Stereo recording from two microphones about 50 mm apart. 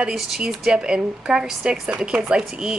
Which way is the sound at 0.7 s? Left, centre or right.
Centre.